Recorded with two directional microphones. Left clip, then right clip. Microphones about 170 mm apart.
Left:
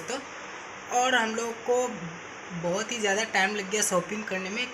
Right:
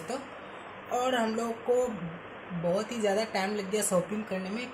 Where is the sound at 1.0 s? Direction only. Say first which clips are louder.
Left 4 dB; 5° right (ahead or behind).